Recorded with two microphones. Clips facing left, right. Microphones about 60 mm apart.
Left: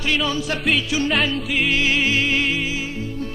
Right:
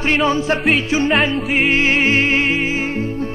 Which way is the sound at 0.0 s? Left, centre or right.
Right.